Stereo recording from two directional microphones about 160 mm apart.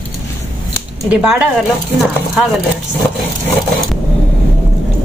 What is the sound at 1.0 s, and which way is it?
Speech, 5° right (ahead or behind).